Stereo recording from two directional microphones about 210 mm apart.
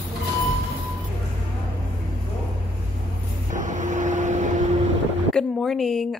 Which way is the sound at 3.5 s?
35° right (ahead or behind).